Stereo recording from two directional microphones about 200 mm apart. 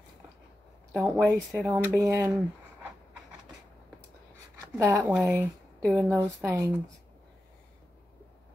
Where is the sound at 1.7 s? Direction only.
10° right (ahead or behind).